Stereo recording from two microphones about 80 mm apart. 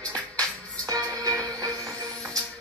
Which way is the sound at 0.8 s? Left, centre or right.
Right.